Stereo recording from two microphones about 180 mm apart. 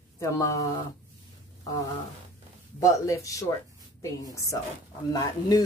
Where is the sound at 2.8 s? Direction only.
20° left (ahead or behind).